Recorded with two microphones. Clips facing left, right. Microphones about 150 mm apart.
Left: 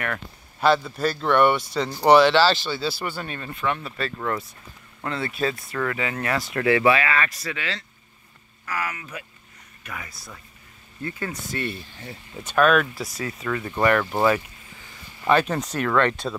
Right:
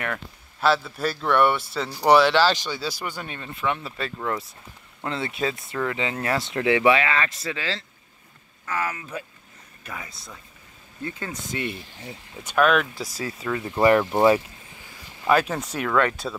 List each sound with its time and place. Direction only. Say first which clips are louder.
0.8 s a man's voice: left 2 dB; 5° right (ahead or behind)
4.2 s a man's voice: even; 5° right (ahead or behind)
5.0 s speech: left 1 dB; 25° right (ahead or behind)
12.9 s a man's voice: even; centre (ahead or behind)
13.8 s speech: right 3 dB; 20° right (ahead or behind)
15.2 s a man's voice: left 1 dB; 5° right (ahead or behind)